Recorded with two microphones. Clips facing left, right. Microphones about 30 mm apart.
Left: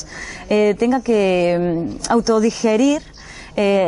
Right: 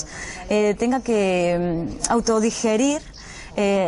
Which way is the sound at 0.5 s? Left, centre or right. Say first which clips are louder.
Left 4 dB; left.